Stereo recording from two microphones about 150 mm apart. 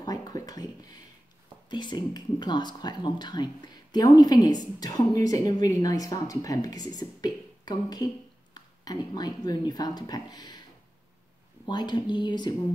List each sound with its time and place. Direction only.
0.0 s a sound: 25° left (ahead or behind)
1.7 s speech: 30° left (ahead or behind)
11.6 s speech: 30° left (ahead or behind)